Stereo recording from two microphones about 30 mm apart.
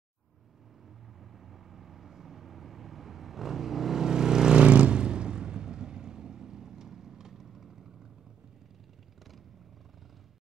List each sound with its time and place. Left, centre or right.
1.3 s vehicle: centre
4.0 s vehicle: right
4.6 s vehicle: right; by 7.9 s centre